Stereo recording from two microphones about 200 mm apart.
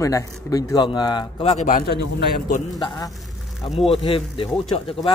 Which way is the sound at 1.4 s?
35° left (ahead or behind).